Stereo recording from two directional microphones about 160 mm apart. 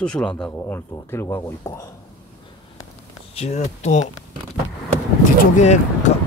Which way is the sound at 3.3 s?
45° left (ahead or behind).